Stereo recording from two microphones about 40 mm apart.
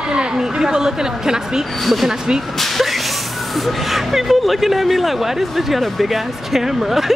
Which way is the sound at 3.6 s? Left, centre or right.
Centre.